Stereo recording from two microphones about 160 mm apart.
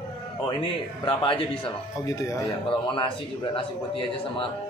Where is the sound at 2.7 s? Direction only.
30° left (ahead or behind).